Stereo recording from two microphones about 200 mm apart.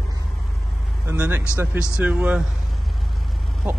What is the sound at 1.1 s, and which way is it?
Speech, 10° right (ahead or behind).